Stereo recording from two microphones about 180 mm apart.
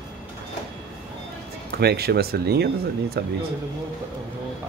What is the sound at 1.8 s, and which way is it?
Speech, 60° right (ahead or behind).